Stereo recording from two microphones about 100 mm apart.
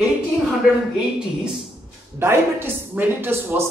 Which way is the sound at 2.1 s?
20° right (ahead or behind).